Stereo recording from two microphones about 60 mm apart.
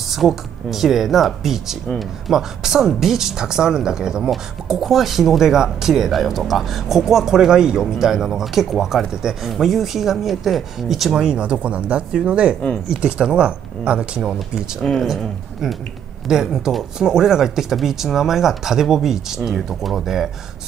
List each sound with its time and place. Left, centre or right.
0.1 s speech: centre
11.2 s speech: centre
14.8 s speech: centre
16.3 s speech: centre